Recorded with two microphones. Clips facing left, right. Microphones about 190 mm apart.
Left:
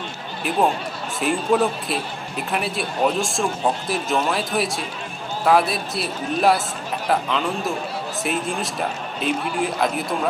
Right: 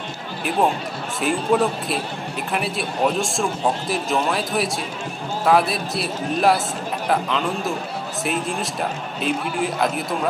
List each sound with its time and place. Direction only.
1.2 s speech: centre (ahead or behind)